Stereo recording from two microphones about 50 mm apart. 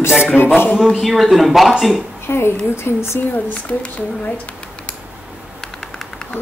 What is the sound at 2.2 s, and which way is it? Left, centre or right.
Speech, left.